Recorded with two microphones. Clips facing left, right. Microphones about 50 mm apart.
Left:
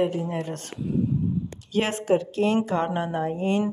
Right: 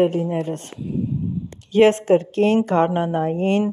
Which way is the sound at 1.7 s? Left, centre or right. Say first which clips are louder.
Right 9 dB; right.